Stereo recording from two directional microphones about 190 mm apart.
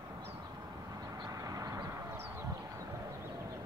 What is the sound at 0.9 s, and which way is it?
Vehicle, 20° right (ahead or behind).